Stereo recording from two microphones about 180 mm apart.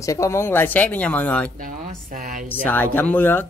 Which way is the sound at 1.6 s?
50° right (ahead or behind).